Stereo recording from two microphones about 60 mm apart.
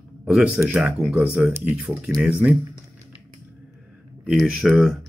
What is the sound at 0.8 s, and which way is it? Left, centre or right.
Speech, centre.